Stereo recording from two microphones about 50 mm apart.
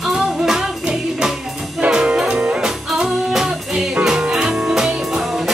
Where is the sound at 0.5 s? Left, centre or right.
Centre.